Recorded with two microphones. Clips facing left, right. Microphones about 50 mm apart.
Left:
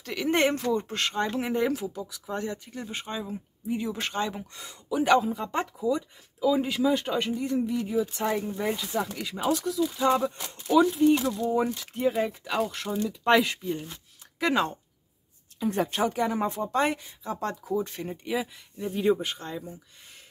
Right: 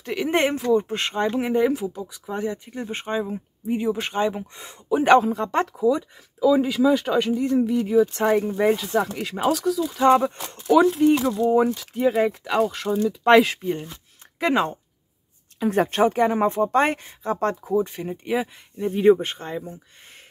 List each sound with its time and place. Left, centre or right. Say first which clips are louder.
0.0 s speech: right 3 dB; right
2.7 s speech: right 7 dB; right
3.9 s speech: right 6 dB; centre
4.6 s speech: right 3 dB; right
5.2 s speech: right 6 dB; right
7.2 s speech: right 7 dB; right
9.5 s speech: right 3 dB; right
13.6 s speech: right 5 dB; right
14.4 s speech: right 4 dB; right
15.8 s speech: right 8 dB; right
17.7 s speech: right 7 dB; centre
18.2 s speech: right 6 dB; right